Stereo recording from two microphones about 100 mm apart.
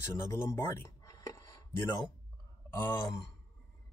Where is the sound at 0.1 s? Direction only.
30° left (ahead or behind).